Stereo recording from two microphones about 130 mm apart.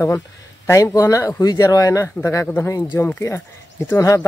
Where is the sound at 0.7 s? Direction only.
20° left (ahead or behind).